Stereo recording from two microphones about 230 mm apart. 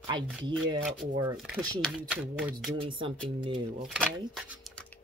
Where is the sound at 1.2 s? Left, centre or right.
Centre.